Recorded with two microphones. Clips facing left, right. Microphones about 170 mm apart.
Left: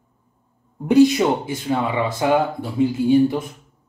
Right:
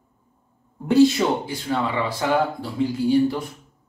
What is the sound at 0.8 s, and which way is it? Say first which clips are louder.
Speech: left 2 dB; 15° left (ahead or behind).